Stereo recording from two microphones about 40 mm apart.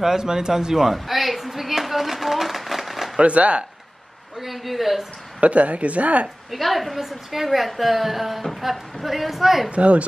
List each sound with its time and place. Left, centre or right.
0.0 s a sound: centre
3.2 s speech: right
4.4 s a woman's voice: centre
5.4 s speech: right
6.5 s a woman's voice: centre
9.7 s speech: right